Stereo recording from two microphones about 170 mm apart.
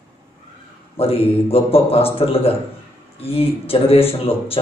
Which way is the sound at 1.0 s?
35° left (ahead or behind).